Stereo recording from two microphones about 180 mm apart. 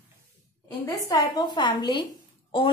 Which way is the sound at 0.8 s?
20° left (ahead or behind).